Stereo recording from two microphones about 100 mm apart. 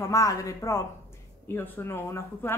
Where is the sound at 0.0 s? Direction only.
35° left (ahead or behind).